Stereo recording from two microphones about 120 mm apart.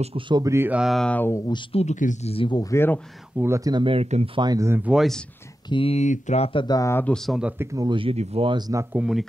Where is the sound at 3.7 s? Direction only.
45° right (ahead or behind).